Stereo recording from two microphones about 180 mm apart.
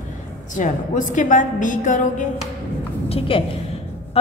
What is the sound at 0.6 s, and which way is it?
A woman's voice, 45° left (ahead or behind).